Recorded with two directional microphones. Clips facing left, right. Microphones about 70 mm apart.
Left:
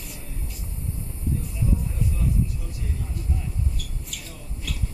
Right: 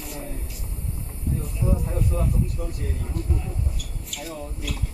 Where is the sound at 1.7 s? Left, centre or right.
Right.